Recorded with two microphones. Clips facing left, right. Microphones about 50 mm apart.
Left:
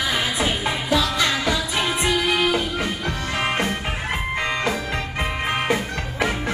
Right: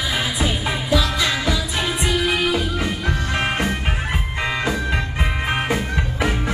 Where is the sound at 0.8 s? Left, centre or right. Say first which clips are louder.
Right 1 dB; left.